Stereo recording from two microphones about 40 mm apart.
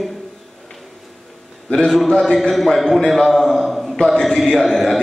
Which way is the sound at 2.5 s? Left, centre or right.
Centre.